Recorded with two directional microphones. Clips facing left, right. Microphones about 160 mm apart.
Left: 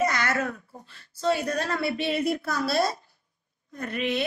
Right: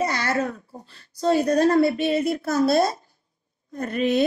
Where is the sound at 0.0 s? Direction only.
30° right (ahead or behind).